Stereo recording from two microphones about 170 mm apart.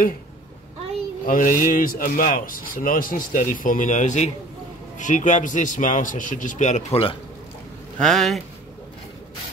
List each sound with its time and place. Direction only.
1.2 s a man's voice: 55° left (ahead or behind); by 7.2 s 35° left (ahead or behind)
8.0 s speech: centre (ahead or behind)